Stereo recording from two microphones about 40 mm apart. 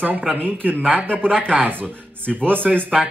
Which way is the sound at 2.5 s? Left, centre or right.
Right.